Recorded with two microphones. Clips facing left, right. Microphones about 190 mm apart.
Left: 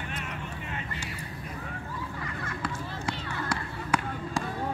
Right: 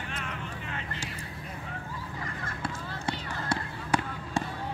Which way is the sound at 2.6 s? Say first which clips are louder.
Left 1 dB; 25° right (ahead or behind).